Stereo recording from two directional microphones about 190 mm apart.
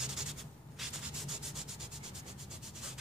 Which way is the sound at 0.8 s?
Centre (ahead or behind).